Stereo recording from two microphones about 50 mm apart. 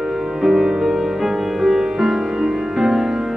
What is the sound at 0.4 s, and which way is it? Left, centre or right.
Music, centre.